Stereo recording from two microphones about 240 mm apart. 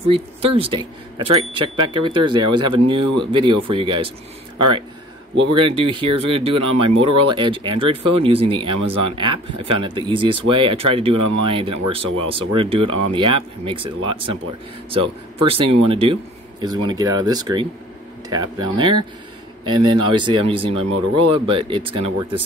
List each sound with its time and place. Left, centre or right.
0.1 s speech: right